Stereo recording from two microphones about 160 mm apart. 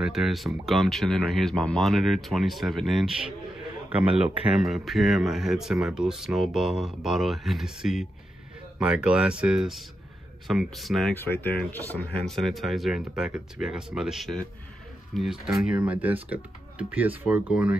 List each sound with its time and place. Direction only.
0.0 s speech: centre (ahead or behind)
4.5 s speech: 5° right (ahead or behind)
11.1 s speech: 15° left (ahead or behind)
12.3 s speech: centre (ahead or behind)